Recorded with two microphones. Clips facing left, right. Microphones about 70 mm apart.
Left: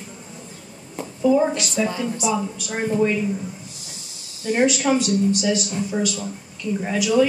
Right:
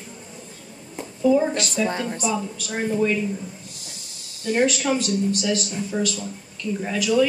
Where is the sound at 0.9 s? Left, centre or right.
Centre.